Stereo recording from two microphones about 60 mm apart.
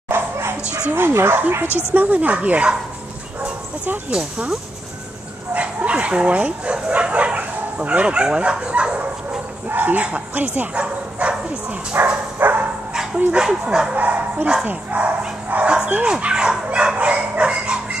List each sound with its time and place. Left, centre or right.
0.1 s dog: right
0.9 s speech: right
1.7 s speech: left
2.0 s speech: right
3.4 s dog: right
4.1 s speech: centre
5.5 s speech: right
9.7 s speech: right
12.4 s dog: right
13.3 s speech: centre
13.9 s speech: right